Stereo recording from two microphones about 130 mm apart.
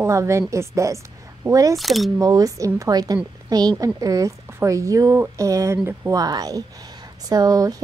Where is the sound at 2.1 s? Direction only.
30° right (ahead or behind).